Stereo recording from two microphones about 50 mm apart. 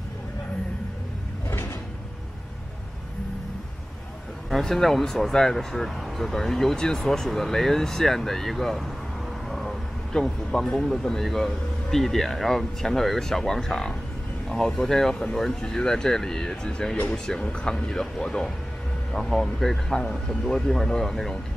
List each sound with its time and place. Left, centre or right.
1.5 s drawer open or close: left
4.5 s speech: centre
9.5 s a sound: centre
10.1 s speech: centre